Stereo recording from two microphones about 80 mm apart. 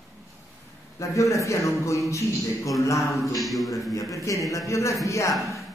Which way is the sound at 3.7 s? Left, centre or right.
Left.